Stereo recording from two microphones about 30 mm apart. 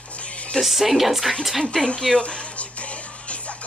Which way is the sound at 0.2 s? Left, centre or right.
Left.